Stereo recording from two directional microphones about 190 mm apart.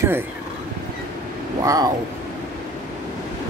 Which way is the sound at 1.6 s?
15° right (ahead or behind).